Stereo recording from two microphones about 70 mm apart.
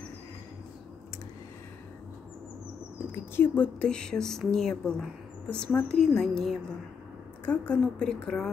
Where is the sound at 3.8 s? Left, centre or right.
Centre.